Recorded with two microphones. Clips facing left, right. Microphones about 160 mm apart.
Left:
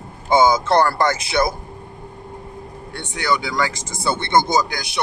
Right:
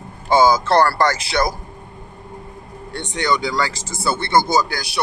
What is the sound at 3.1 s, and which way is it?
Speech, 10° left (ahead or behind).